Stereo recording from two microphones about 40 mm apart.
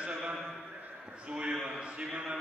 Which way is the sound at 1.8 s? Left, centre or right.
Right.